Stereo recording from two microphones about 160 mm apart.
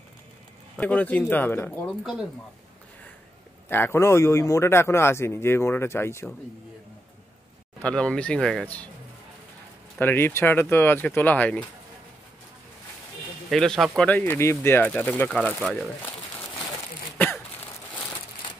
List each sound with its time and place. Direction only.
0.7 s a man's voice: 10° left (ahead or behind)
1.9 s speech: centre (ahead or behind)
3.6 s a man's voice: 15° left (ahead or behind)
7.8 s a man's voice: 5° left (ahead or behind)
9.9 s a man's voice: 15° left (ahead or behind)
13.5 s a man's voice: centre (ahead or behind)